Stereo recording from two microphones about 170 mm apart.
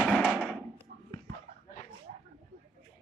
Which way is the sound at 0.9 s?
90° right.